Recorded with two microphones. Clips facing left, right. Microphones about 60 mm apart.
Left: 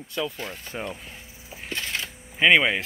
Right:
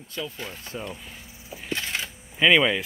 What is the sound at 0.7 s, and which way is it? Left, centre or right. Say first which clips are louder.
Speech: left 2 dB; left.